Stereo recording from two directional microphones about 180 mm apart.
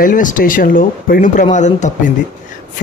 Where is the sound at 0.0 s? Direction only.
45° left (ahead or behind).